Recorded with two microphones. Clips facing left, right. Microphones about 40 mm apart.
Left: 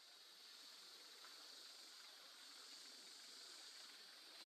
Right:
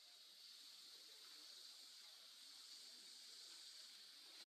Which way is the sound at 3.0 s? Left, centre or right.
Left.